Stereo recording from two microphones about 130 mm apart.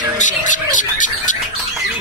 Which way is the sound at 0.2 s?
80° left.